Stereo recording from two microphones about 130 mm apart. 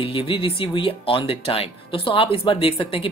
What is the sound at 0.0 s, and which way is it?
Speech, 45° left (ahead or behind).